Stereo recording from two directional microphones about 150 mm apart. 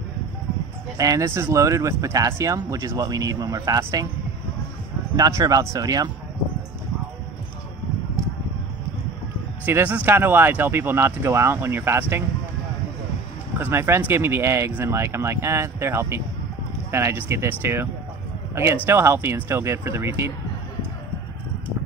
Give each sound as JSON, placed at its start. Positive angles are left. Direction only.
{"t": 0.9, "sound": "speech", "side_deg": -20}
{"t": 5.1, "sound": "speech", "side_deg": -25}
{"t": 9.7, "sound": "speech", "side_deg": -10}
{"t": 13.6, "sound": "a man's voice", "side_deg": -15}